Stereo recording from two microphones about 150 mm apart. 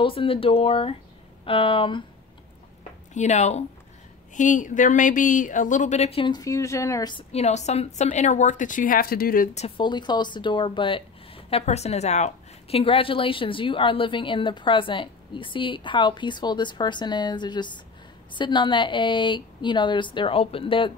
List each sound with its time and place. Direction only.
0.0 s a woman's voice: 35° left (ahead or behind)
3.2 s a woman's voice: 50° left (ahead or behind)
6.3 s speech: 20° left (ahead or behind)
7.3 s a woman's voice: 50° left (ahead or behind); by 9.5 s 75° left (ahead or behind)
9.8 s a woman's voice: 30° left (ahead or behind)